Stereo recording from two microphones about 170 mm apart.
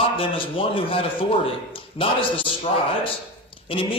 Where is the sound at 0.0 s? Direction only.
30° left (ahead or behind).